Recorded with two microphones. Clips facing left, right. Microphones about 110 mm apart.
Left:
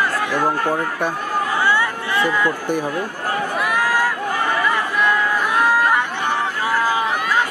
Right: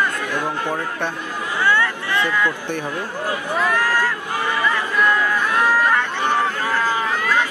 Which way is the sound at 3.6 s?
15° left (ahead or behind).